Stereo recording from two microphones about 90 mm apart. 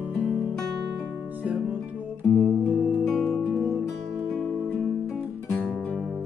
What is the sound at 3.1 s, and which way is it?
Music, 5° left (ahead or behind).